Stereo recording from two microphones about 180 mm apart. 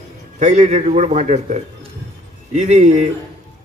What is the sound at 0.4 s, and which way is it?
A man's voice, 40° right (ahead or behind).